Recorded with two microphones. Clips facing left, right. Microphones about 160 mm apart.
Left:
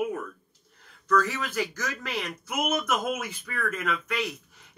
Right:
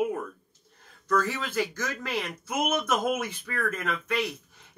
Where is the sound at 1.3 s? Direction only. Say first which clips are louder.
Right 1 dB; 25° right (ahead or behind).